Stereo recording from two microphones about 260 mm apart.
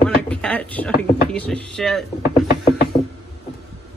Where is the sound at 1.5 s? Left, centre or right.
Centre.